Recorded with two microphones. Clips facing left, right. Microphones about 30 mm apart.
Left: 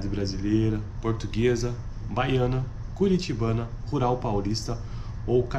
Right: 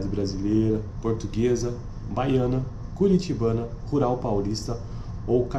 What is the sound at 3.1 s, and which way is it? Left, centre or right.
Speech, left.